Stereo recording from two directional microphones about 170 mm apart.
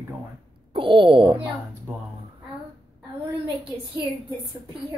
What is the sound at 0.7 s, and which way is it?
Speech, 30° right (ahead or behind).